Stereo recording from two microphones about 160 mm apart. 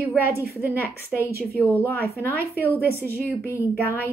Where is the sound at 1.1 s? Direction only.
Centre (ahead or behind).